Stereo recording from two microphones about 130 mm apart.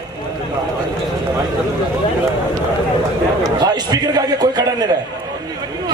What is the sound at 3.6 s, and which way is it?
A man's voice, 30° right (ahead or behind).